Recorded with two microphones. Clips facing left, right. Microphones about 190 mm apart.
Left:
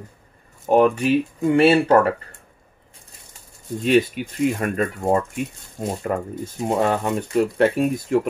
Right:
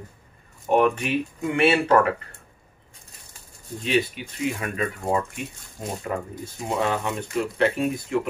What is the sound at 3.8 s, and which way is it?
Speech, 50° left (ahead or behind).